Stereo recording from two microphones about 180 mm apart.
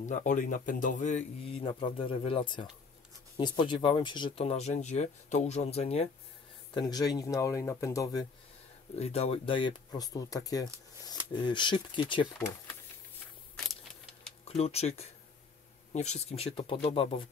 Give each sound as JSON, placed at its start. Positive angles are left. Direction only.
{"t": 0.1, "sound": "speech", "side_deg": 45}
{"t": 6.7, "sound": "speech", "side_deg": 25}
{"t": 8.9, "sound": "speech", "side_deg": 35}
{"t": 14.5, "sound": "speech", "side_deg": 35}